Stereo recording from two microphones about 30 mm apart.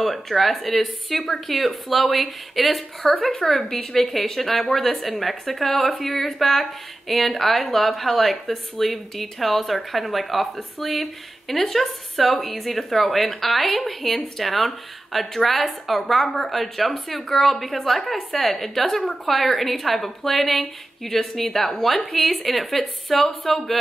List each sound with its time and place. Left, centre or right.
0.0 s speech: centre
3.6 s a woman's voice: centre
4.0 s a woman's voice: centre